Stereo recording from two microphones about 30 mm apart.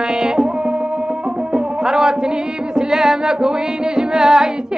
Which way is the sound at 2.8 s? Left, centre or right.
Centre.